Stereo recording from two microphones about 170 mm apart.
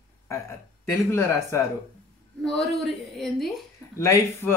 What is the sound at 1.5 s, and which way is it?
Speech, 15° left (ahead or behind).